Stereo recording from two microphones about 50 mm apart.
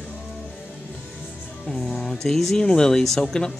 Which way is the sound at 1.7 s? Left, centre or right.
Centre.